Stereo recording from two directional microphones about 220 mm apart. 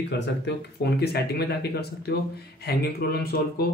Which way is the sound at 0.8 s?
45° left (ahead or behind).